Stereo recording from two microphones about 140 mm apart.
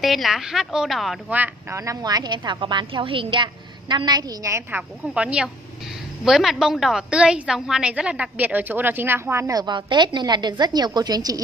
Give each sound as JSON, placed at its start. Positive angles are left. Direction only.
{"t": 0.0, "sound": "a woman's voice", "side_deg": 0}
{"t": 1.3, "sound": "a woman's voice", "side_deg": -15}
{"t": 5.1, "sound": "a woman's voice", "side_deg": -5}